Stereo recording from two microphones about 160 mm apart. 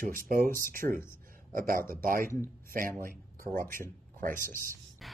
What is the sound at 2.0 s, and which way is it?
Speech, 60° right (ahead or behind).